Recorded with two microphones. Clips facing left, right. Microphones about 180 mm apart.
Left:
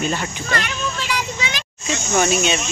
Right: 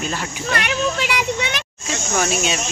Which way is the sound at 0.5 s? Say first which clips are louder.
Right 4 dB; 60° right (ahead or behind).